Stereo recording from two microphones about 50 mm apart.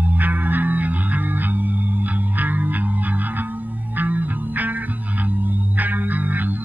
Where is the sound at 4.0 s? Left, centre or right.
Right.